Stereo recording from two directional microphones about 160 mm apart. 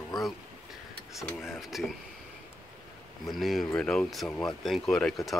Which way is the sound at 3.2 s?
Centre (ahead or behind).